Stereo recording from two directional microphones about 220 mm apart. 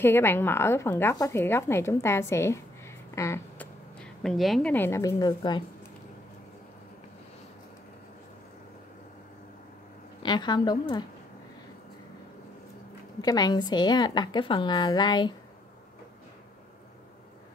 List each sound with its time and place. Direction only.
0.0 s speech: 10° left (ahead or behind)
10.2 s a woman's voice: 20° left (ahead or behind)
13.2 s a woman's voice: 15° left (ahead or behind)